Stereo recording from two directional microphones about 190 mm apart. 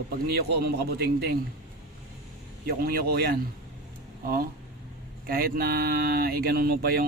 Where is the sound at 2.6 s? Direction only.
55° right (ahead or behind).